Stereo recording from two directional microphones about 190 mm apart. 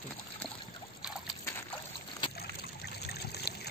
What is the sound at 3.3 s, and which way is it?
Trickle, 60° left (ahead or behind).